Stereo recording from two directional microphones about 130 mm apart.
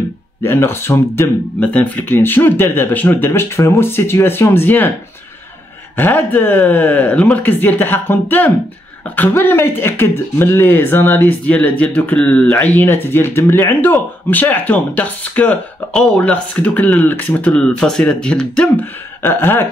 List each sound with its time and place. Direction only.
0.4 s speech: 20° left (ahead or behind)
5.9 s speech: 15° left (ahead or behind)
19.2 s speech: 15° left (ahead or behind)